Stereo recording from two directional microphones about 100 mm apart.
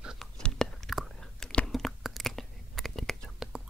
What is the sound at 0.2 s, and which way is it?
Whispering, 5° left (ahead or behind).